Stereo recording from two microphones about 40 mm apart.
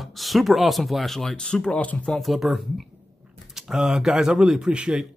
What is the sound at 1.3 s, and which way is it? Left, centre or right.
Speech, left.